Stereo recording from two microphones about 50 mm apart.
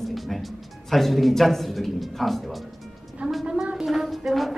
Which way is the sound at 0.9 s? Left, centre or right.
Centre.